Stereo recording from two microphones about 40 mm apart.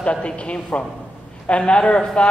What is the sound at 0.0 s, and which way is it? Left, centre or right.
Speech, left.